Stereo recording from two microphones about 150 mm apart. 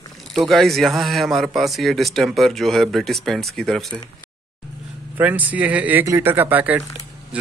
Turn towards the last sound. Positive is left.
turn(degrees=-10)  # may be behind; listen again after turning